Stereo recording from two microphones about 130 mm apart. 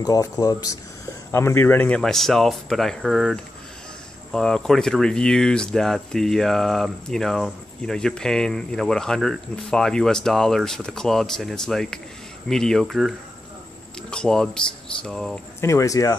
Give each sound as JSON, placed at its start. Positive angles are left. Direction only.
{"t": 0.0, "sound": "speech", "side_deg": 25}
{"t": 14.1, "sound": "speech", "side_deg": 5}
{"t": 15.6, "sound": "speech", "side_deg": 25}